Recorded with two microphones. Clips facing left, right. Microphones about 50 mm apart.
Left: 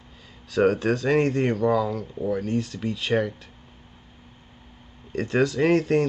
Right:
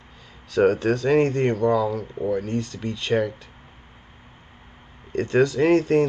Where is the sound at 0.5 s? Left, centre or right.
Centre.